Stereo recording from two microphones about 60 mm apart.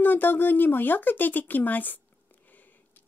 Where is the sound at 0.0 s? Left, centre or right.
Left.